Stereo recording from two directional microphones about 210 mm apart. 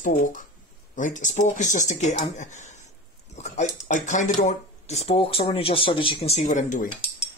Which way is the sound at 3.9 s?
35° left (ahead or behind).